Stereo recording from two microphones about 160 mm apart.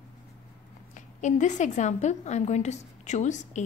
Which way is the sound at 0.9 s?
50° left (ahead or behind).